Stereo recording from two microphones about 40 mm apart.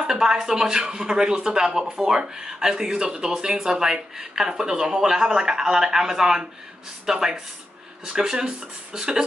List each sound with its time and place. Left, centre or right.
0.0 s speech: centre